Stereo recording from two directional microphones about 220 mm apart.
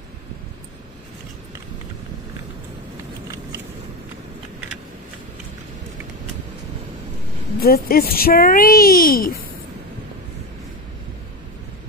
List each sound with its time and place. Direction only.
7.6 s a child's voice: 45° left (ahead or behind)